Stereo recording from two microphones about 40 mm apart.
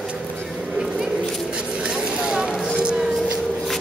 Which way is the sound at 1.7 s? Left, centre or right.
Right.